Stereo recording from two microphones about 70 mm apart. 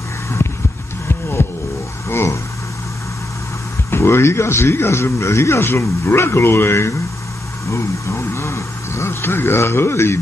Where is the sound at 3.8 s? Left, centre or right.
Left.